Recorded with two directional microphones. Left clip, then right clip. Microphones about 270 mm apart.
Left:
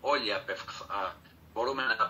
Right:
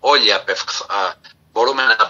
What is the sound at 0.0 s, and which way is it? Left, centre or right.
A man's voice, right.